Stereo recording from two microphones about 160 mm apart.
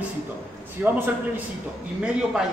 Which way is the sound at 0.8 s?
10° right (ahead or behind).